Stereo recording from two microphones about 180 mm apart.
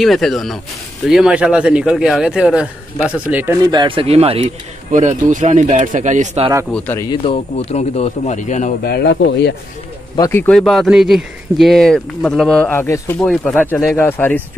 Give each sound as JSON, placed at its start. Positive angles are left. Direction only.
{"t": 0.0, "sound": "speech", "side_deg": 0}
{"t": 6.7, "sound": "speech", "side_deg": 10}
{"t": 7.1, "sound": "speech", "side_deg": 35}
{"t": 8.8, "sound": "speech", "side_deg": 70}
{"t": 10.1, "sound": "speech", "side_deg": 15}
{"t": 10.5, "sound": "speech", "side_deg": 0}
{"t": 13.2, "sound": "speech", "side_deg": 0}